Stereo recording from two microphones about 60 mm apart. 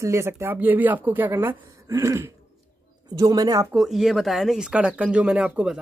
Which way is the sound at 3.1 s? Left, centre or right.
Right.